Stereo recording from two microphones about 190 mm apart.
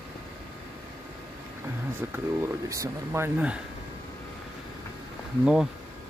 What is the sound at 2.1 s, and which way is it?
Speech, 15° right (ahead or behind).